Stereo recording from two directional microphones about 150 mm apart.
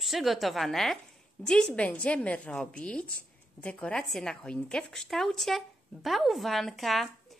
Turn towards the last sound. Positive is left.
turn(degrees=0)  # may be behind; listen again after turning